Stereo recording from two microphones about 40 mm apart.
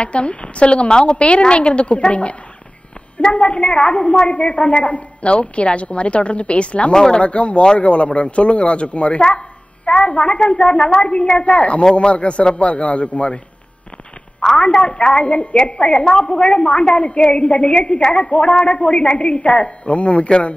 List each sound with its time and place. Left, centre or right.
0.0 s a woman's voice: left
6.9 s speech: centre
7.2 s a woman's voice: left
14.6 s a woman's voice: left